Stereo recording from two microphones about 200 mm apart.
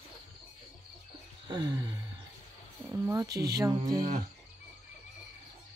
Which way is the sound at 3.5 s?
20° right (ahead or behind).